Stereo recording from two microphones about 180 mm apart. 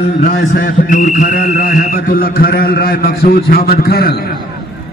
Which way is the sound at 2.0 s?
55° left (ahead or behind).